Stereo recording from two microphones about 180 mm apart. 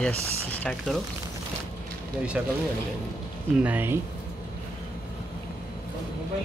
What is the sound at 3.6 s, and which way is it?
Speech, 10° right (ahead or behind).